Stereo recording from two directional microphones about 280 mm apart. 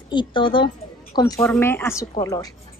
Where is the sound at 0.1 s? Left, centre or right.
Centre.